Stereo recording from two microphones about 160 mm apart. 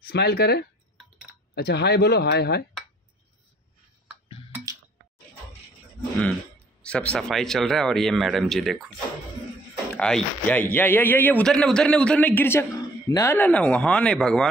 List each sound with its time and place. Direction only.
0.0 s speech: 90° left
6.8 s speech: 5° left (ahead or behind)
9.9 s a man's voice: 5° left (ahead or behind)